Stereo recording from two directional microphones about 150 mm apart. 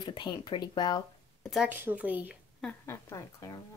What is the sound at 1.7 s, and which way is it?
Speech, 10° right (ahead or behind).